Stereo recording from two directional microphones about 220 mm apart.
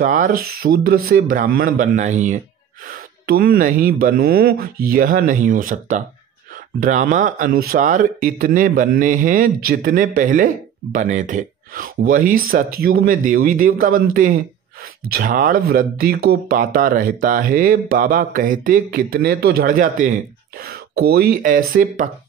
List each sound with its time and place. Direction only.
0.0 s speech: 40° right (ahead or behind)